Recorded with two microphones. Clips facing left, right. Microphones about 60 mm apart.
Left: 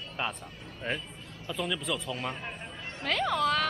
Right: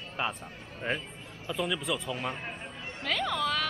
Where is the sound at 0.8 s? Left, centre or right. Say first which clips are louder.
Right 1 dB; centre.